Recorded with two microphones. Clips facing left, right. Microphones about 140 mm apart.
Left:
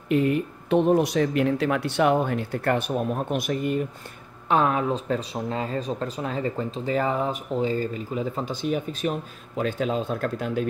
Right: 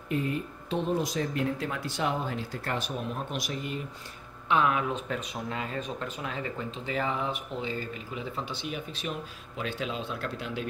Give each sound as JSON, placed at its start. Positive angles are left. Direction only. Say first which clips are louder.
{"t": 0.1, "sound": "speech", "louder": "left 8 dB", "side_deg": 70}
{"t": 4.5, "sound": "speech", "louder": "left 4 dB", "side_deg": 40}